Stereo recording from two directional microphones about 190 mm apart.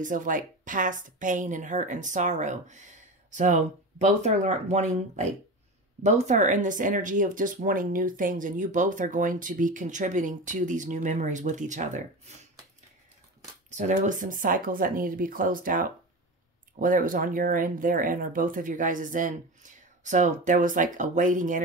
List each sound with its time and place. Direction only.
0.0 s a woman's voice: 45° right (ahead or behind)
13.7 s speech: 40° right (ahead or behind)